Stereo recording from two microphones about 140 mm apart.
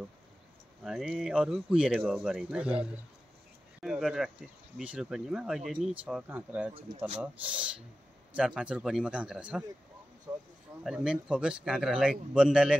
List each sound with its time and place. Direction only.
0.8 s speech: 5° right (ahead or behind)
10.8 s speech: 5° right (ahead or behind)